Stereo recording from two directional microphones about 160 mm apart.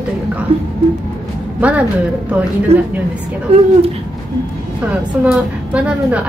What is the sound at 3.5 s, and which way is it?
Speech, 40° right (ahead or behind).